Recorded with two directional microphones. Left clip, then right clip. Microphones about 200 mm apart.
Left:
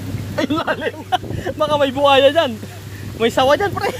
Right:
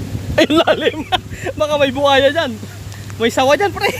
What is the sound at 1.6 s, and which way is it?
A man's voice, 10° right (ahead or behind).